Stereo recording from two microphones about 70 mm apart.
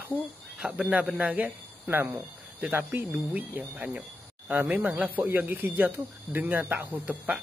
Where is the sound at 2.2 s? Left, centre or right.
Centre.